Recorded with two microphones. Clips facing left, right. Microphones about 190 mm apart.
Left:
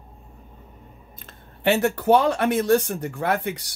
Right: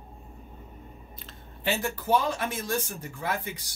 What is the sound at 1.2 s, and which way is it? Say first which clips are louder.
Speech: left 9 dB; 65° left (ahead or behind).